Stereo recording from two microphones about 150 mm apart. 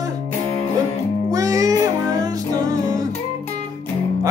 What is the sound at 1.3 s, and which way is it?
Music, 25° right (ahead or behind).